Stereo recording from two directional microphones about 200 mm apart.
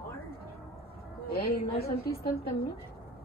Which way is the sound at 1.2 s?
50° left (ahead or behind).